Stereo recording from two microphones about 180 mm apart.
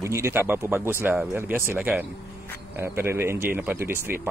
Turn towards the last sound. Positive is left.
turn(degrees=-15)  # may be behind; listen again after turning